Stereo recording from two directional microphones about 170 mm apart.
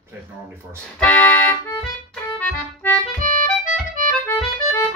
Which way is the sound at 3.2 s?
55° right (ahead or behind).